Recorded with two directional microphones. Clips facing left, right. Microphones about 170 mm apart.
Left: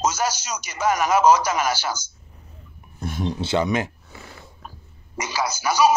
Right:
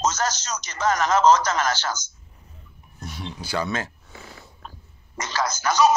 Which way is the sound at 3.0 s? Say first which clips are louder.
Left 8 dB; 50° left (ahead or behind).